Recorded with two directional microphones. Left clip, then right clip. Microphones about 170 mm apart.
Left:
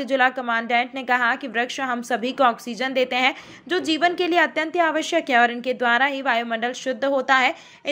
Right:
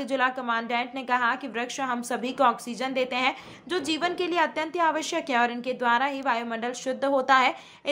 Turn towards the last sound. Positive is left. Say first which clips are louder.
# left 3 dB
turn(degrees=10)  # may be behind; listen again after turning